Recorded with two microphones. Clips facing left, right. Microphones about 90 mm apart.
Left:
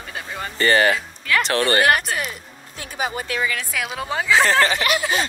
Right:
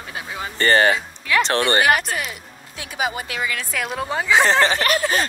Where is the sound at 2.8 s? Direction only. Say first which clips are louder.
Right 1 dB; 40° left (ahead or behind).